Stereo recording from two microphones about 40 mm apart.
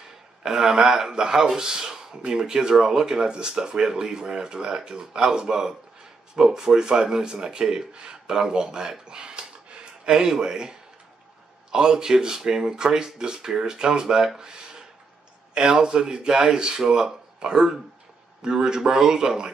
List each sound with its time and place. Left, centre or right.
0.4 s speech: centre